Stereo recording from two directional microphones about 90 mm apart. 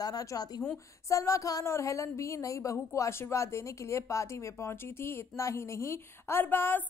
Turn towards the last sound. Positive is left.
turn(degrees=25)  # may be behind; listen again after turning